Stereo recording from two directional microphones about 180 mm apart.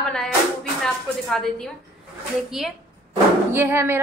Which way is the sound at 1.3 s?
Centre (ahead or behind).